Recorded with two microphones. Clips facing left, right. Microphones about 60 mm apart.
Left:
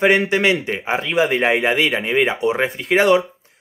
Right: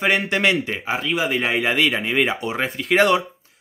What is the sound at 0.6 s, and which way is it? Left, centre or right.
Speech, left.